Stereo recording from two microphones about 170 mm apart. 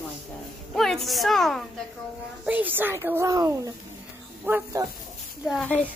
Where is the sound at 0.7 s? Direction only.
Centre (ahead or behind).